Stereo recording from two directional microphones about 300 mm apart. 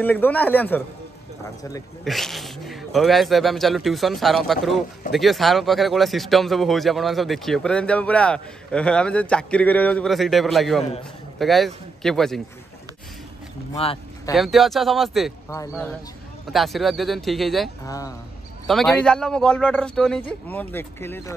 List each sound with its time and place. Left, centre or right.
0.0 s speech: centre
2.0 s a man's voice: centre
13.7 s speech: centre
14.3 s speech: centre
16.4 s speech: centre
17.8 s speech: centre